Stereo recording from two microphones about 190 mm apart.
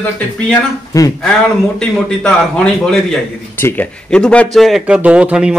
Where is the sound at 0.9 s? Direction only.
20° left (ahead or behind).